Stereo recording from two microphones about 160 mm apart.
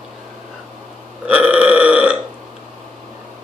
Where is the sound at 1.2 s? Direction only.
10° right (ahead or behind).